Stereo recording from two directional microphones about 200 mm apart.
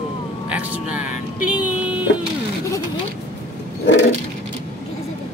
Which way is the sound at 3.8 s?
60° left (ahead or behind).